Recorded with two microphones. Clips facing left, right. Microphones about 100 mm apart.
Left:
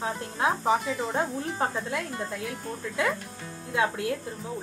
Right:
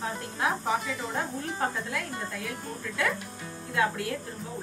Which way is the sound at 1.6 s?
25° left (ahead or behind).